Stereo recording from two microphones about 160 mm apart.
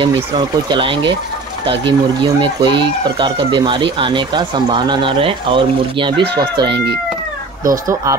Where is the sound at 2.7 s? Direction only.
30° right (ahead or behind).